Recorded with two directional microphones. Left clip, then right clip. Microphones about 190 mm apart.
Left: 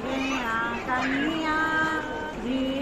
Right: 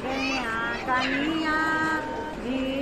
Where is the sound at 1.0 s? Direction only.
55° left (ahead or behind).